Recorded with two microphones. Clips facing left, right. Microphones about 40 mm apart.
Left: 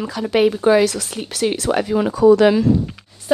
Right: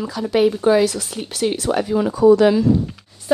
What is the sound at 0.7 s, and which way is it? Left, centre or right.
Speech, left.